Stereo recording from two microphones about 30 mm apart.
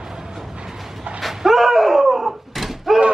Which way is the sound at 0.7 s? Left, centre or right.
Centre.